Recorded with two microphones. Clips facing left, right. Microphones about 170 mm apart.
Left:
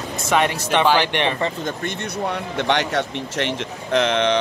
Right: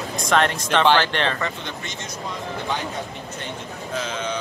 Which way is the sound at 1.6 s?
60° left (ahead or behind).